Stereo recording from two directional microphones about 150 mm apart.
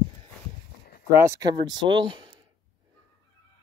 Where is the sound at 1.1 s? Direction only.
20° right (ahead or behind).